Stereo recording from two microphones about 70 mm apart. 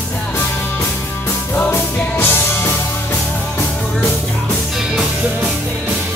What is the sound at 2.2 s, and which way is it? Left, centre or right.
Music, left.